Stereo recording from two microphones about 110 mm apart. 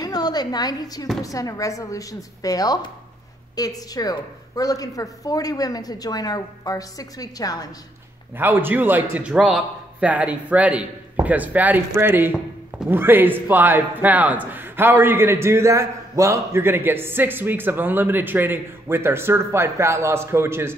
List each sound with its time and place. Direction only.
0.0 s a sound: 40° left (ahead or behind)
1.2 s speech: 30° left (ahead or behind)
8.4 s a man's voice: 20° right (ahead or behind)